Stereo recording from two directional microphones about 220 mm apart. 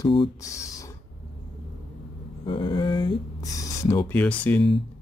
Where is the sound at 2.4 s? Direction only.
20° left (ahead or behind); by 4.7 s 5° left (ahead or behind).